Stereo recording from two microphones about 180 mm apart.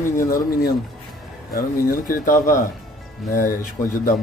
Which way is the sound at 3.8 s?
15° left (ahead or behind).